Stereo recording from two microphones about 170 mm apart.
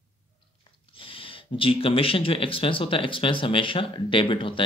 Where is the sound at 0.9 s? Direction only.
30° left (ahead or behind).